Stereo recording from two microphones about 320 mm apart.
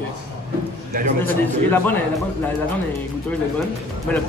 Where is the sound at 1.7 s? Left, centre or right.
Centre.